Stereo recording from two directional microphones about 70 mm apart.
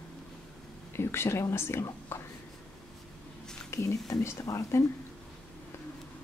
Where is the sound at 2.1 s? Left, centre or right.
Left.